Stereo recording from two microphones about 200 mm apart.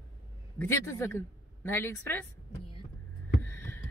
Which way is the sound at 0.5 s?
10° left (ahead or behind).